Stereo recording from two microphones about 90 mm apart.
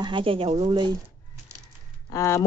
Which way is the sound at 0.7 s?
50° right (ahead or behind).